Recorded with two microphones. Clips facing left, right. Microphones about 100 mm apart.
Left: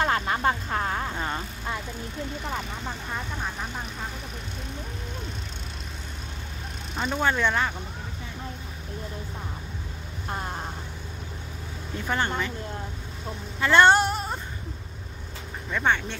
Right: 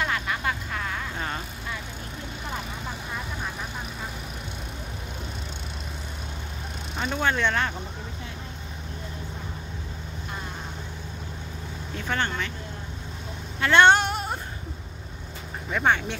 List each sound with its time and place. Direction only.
0.0 s vehicle: 35° left (ahead or behind)
1.1 s vehicle: 10° left (ahead or behind)
7.0 s speech: centre (ahead or behind)
12.0 s speech: 15° left (ahead or behind)
13.6 s female singing: 5° left (ahead or behind)
15.7 s speech: 10° right (ahead or behind)